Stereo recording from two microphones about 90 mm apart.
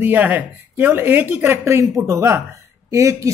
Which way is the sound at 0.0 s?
20° right (ahead or behind).